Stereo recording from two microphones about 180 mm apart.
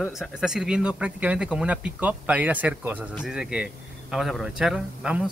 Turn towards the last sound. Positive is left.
turn(degrees=-5)  # may be behind; listen again after turning